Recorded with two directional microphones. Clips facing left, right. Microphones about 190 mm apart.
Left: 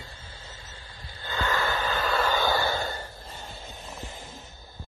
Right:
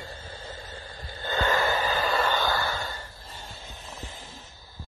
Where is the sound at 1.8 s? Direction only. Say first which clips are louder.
Right 1 dB; centre (ahead or behind).